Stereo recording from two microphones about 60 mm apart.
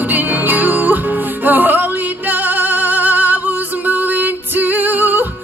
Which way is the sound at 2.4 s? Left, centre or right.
Right.